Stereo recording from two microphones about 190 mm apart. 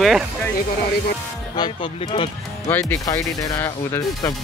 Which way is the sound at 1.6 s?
30° left (ahead or behind).